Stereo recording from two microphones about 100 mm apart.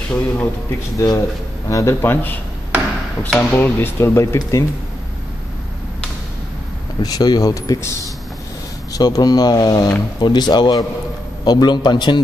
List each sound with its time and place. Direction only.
0.1 s a man's voice: 15° left (ahead or behind)
0.9 s speech: 35° left (ahead or behind)
7.0 s speech: 40° left (ahead or behind)
8.9 s a man's voice: 40° left (ahead or behind)